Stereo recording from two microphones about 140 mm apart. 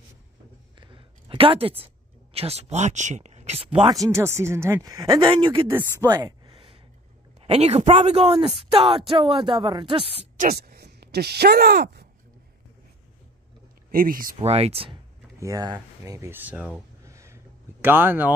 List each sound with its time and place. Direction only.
0.7 s a sound: 35° right (ahead or behind)
2.3 s speech: 50° right (ahead or behind)
3.8 s speech: 25° right (ahead or behind)
5.7 s speech: 15° right (ahead or behind)
6.0 s a sound: 25° right (ahead or behind)
7.3 s speech: 45° right (ahead or behind)
10.4 s speech: 90° right
13.8 s speech: 90° right
14.4 s speech: 45° right (ahead or behind)
15.4 s speech: 25° right (ahead or behind); by 16.8 s 10° right (ahead or behind)
17.0 s a sound: 20° right (ahead or behind)
17.8 s speech: 15° right (ahead or behind)